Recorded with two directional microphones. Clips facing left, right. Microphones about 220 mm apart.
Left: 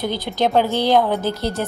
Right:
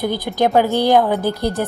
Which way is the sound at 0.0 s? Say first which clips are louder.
Right 3 dB; 10° right (ahead or behind).